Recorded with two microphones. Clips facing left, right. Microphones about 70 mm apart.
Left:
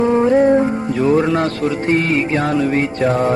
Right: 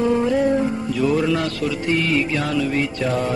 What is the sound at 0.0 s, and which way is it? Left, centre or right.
Music, left.